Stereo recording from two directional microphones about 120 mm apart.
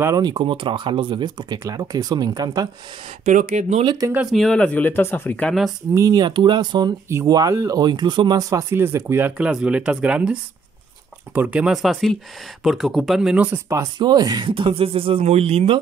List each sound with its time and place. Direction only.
0.0 s speech: 30° right (ahead or behind)
3.3 s speech: 75° right (ahead or behind)
3.8 s speech: 35° right (ahead or behind)
4.3 s speech: 5° left (ahead or behind)
5.9 s speech: 30° right (ahead or behind)
7.1 s speech: 25° right (ahead or behind)
9.4 s speech: 10° right (ahead or behind)
11.3 s speech: 10° right (ahead or behind)
13.9 s speech: 35° right (ahead or behind); by 15.8 s 55° right (ahead or behind)